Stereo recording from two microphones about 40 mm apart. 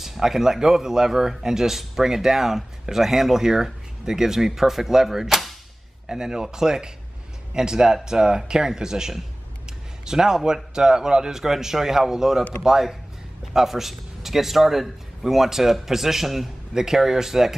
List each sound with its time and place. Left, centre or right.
0.0 s speech: centre
6.0 s speech: centre